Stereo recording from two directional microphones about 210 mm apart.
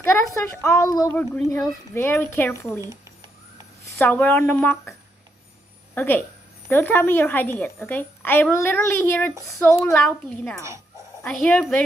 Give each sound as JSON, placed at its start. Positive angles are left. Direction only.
{"t": 0.0, "sound": "a woman's voice", "side_deg": 10}
{"t": 4.0, "sound": "a woman's voice", "side_deg": 10}
{"t": 5.9, "sound": "a woman's voice", "side_deg": 10}
{"t": 9.9, "sound": "speech", "side_deg": 5}